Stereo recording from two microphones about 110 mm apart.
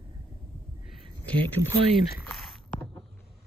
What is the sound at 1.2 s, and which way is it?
Speech, 15° left (ahead or behind).